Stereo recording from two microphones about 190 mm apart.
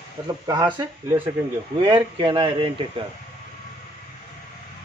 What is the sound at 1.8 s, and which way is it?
Speech, 25° right (ahead or behind).